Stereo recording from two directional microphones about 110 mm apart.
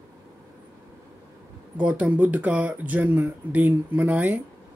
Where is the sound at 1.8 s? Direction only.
10° right (ahead or behind).